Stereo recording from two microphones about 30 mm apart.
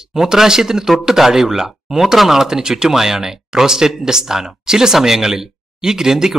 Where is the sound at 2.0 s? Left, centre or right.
Centre.